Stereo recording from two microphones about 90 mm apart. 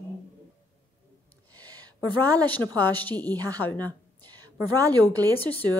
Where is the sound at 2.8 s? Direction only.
20° left (ahead or behind).